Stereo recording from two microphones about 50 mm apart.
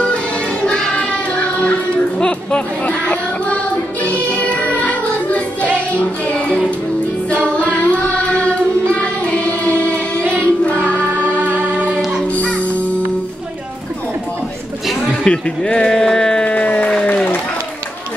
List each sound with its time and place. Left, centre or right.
0.7 s child singing: centre
1.3 s music: left
7.4 s child singing: left
11.3 s music: right
12.3 s music: left
15.2 s speech: centre
16.4 s music: left
17.0 s applause: left